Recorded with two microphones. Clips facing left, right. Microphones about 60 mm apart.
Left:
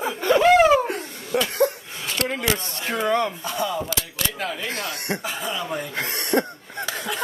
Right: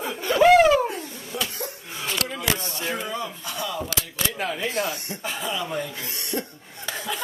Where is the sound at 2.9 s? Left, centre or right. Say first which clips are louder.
Left 8 dB; left.